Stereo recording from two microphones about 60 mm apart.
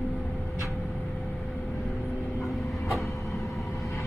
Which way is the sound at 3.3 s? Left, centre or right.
Left.